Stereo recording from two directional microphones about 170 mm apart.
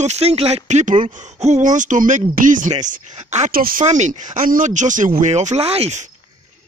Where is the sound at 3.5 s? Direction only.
60° right (ahead or behind).